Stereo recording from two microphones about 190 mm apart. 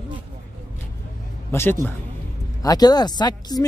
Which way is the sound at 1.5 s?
15° left (ahead or behind).